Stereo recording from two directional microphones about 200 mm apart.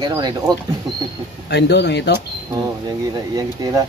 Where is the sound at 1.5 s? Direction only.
60° left (ahead or behind).